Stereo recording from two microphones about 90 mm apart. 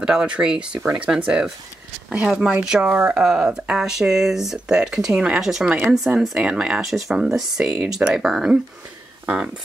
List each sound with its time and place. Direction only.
0.0 s speech: 10° right (ahead or behind)
3.1 s speech: 5° right (ahead or behind)